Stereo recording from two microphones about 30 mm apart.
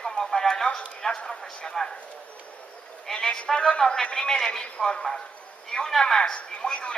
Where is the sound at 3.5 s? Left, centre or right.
Left.